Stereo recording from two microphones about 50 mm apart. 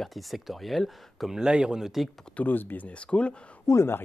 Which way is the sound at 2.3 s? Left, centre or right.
Left.